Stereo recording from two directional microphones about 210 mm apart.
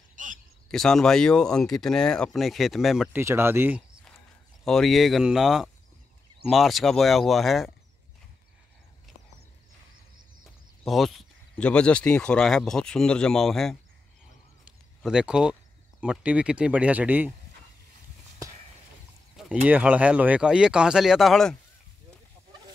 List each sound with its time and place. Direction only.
0.1 s a sound: 40° right (ahead or behind)
0.7 s speech: centre (ahead or behind)
4.6 s speech: centre (ahead or behind)
10.8 s speech: centre (ahead or behind)
14.6 s a sound: 5° right (ahead or behind)
16.0 s speech: 5° right (ahead or behind)
19.3 s speech: 5° right (ahead or behind)